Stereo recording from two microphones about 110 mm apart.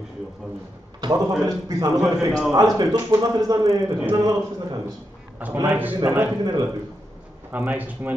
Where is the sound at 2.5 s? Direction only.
35° right (ahead or behind).